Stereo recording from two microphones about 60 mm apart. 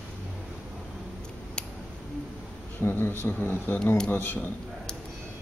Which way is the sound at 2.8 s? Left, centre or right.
Left.